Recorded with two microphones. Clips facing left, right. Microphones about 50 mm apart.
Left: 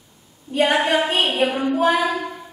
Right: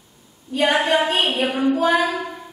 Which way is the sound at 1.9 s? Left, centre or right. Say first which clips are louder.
Right 1 dB; centre.